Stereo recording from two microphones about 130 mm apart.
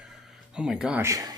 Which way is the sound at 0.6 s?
5° right (ahead or behind).